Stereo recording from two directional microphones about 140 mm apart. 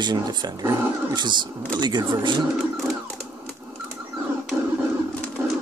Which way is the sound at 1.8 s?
30° right (ahead or behind).